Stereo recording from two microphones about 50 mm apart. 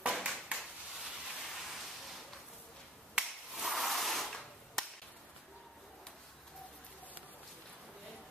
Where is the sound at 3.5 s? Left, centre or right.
Centre.